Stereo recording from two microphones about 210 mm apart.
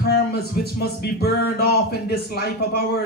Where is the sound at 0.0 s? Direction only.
50° left (ahead or behind).